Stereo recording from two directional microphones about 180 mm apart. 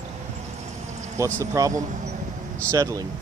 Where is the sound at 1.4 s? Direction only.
20° right (ahead or behind).